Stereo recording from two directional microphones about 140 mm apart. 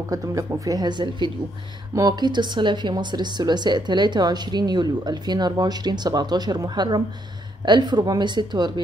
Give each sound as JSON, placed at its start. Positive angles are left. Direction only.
{"t": 0.1, "sound": "speech", "side_deg": -25}